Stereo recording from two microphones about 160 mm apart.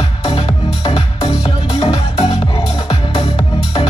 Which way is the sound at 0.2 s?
40° left (ahead or behind).